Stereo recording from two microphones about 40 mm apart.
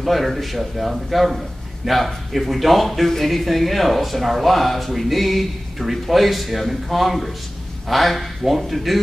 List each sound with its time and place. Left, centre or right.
0.0 s speech: centre